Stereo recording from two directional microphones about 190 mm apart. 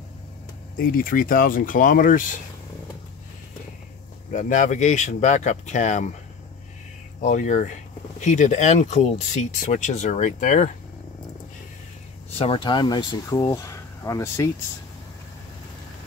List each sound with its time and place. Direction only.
0.7 s speech: 50° left (ahead or behind)
4.3 s speech: 40° left (ahead or behind)
7.2 s speech: 40° left (ahead or behind)
12.4 s speech: 30° left (ahead or behind)